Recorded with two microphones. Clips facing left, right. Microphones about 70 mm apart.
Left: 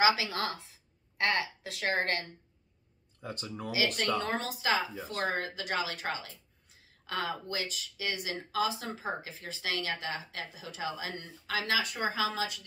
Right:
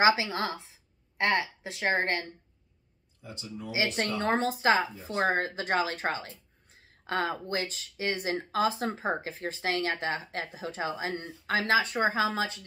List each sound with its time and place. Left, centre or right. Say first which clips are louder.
0.0 s a woman's voice: right 3 dB; right
3.2 s speech: left 2 dB; left
3.7 s speech: right 1 dB; right